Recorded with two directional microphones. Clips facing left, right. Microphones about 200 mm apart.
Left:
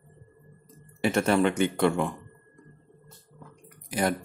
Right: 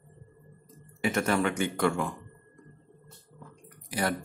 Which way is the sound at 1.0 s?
30° left (ahead or behind).